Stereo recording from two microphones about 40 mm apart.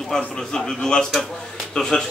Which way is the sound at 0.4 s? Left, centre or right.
Centre.